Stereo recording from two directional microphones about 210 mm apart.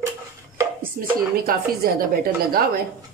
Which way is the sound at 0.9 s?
45° right (ahead or behind).